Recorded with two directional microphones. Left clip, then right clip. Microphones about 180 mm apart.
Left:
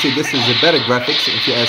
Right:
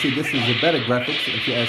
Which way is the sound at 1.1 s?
15° right (ahead or behind).